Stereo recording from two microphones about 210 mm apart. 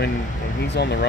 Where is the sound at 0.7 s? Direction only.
55° left (ahead or behind).